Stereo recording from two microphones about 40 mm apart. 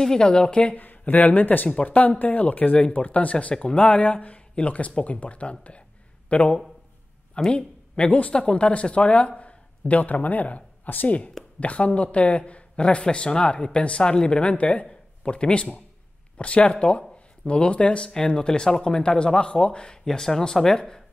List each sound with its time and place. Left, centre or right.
0.0 s speech: centre
0.7 s speech: left
1.7 s speech: left
2.0 s speech: left
3.5 s speech: left
3.8 s speech: left
7.3 s speech: left
8.1 s speech: left; by 21.0 s centre